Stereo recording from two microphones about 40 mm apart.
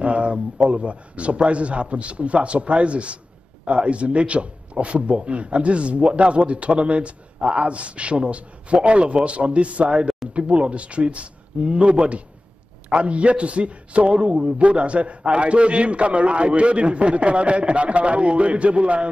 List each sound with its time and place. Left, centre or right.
0.0 s a man's voice: right